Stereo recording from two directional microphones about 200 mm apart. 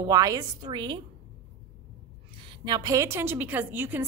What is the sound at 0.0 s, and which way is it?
A woman's voice, 15° right (ahead or behind).